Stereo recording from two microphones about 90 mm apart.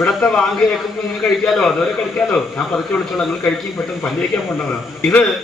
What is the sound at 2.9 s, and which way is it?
Speech, 10° left (ahead or behind).